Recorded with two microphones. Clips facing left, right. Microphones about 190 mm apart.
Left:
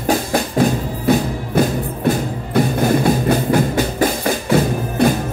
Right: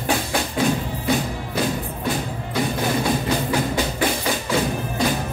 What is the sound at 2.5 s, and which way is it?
Music, 55° left (ahead or behind).